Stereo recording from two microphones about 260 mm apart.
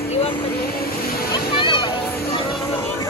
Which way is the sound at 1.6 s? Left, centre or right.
Centre.